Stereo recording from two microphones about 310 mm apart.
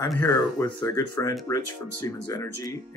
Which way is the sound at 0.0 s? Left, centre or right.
Centre.